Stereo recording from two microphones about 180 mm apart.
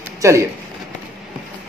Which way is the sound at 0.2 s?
15° right (ahead or behind).